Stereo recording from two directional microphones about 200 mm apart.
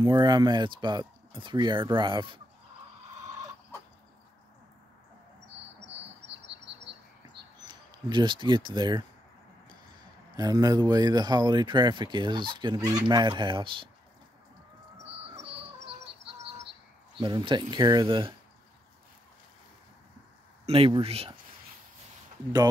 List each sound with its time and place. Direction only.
0.0 s speech: 20° right (ahead or behind)
5.6 s bird: 60° right (ahead or behind)
7.6 s speech: 25° right (ahead or behind)
10.3 s speech: 20° right (ahead or behind)
17.2 s speech: 25° right (ahead or behind)
20.6 s speech: 30° right (ahead or behind)